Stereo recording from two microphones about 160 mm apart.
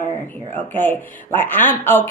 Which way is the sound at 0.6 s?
10° left (ahead or behind).